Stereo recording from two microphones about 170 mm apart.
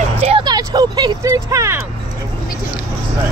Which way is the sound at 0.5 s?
25° right (ahead or behind).